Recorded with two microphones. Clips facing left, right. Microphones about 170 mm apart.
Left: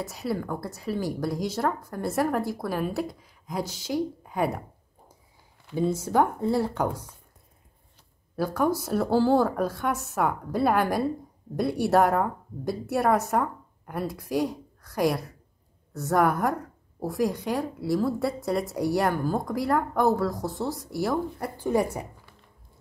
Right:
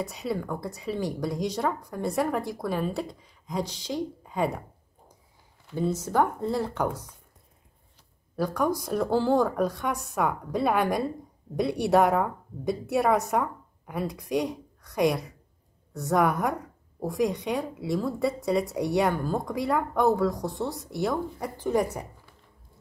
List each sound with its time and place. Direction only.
0.0 s a woman's voice: centre (ahead or behind)
5.8 s speech: 10° left (ahead or behind)
8.4 s a woman's voice: 5° left (ahead or behind)